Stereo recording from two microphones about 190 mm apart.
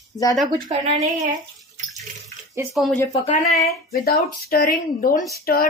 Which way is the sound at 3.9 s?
55° left (ahead or behind).